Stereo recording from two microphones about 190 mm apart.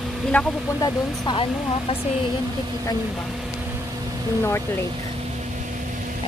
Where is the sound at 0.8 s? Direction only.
25° left (ahead or behind).